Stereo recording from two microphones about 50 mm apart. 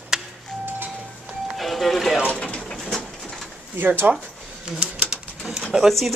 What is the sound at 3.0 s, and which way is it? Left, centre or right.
Bird, centre.